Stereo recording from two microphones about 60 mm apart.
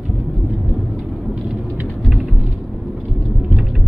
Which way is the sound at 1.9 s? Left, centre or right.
Centre.